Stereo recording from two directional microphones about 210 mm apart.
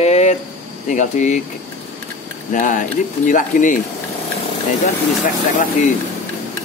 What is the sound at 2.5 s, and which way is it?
Speech, 40° left (ahead or behind).